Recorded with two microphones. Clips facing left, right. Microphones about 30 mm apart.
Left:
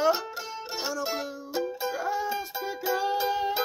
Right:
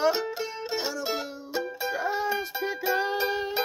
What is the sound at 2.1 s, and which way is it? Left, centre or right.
Music, right.